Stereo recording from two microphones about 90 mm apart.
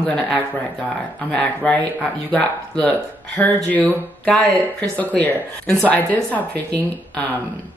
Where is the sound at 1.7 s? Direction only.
15° left (ahead or behind).